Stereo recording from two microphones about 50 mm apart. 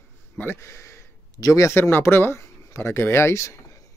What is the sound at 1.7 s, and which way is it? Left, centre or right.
Speech, left.